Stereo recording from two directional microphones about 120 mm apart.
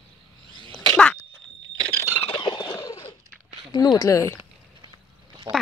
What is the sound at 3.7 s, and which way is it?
Speech, 35° left (ahead or behind).